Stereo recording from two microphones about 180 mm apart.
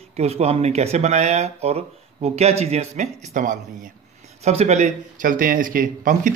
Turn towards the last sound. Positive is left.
turn(degrees=-50)  # may be behind; listen again after turning